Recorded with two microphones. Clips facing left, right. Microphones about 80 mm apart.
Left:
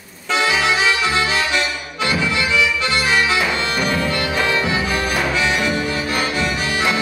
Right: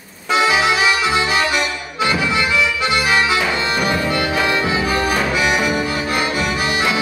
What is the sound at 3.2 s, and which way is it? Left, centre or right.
Music, centre.